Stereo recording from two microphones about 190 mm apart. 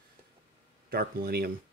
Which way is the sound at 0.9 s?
55° right (ahead or behind).